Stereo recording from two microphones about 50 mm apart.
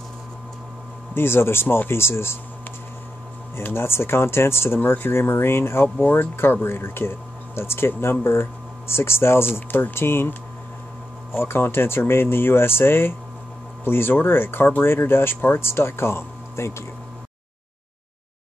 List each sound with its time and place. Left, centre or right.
1.1 s speech: left
3.7 s speech: left
11.3 s speech: left